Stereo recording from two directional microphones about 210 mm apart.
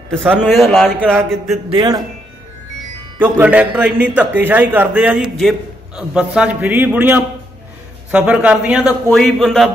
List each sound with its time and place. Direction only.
0.4 s a man's voice: centre (ahead or behind)
1.7 s speech: 20° right (ahead or behind)
3.2 s a man's voice: 5° right (ahead or behind)